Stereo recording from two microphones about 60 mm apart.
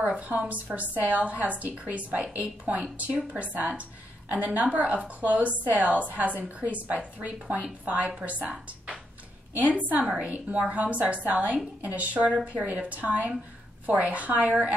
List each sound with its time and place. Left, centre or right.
0.0 s a woman's voice: right
3.5 s a woman's voice: right